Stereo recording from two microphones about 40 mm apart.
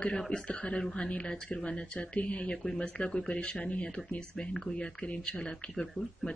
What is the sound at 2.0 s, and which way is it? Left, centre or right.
Speech, left.